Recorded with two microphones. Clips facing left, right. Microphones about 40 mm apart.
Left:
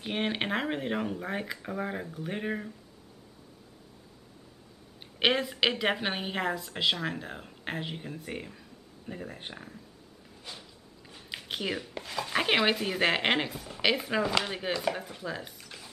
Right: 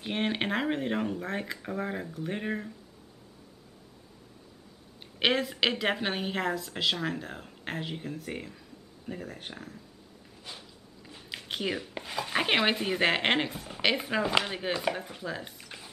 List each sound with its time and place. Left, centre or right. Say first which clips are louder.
0.0 s speech: right 1 dB; centre
5.2 s a woman's voice: even; centre
11.1 s a sound: even; centre
11.9 s speech: even; centre